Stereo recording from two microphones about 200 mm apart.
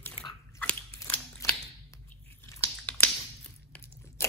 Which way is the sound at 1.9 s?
15° left (ahead or behind).